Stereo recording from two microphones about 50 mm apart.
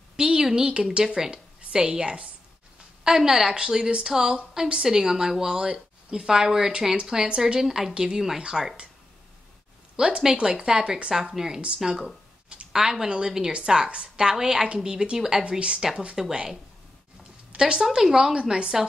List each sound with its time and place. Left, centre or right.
0.1 s a woman's voice: centre
7.6 s speech: centre
9.9 s a woman's voice: centre
17.6 s a woman's voice: centre